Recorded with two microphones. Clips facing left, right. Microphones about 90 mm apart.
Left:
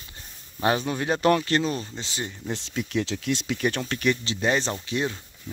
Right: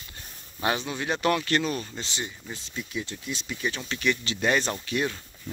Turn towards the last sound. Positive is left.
turn(degrees=25)  # may be behind; listen again after turning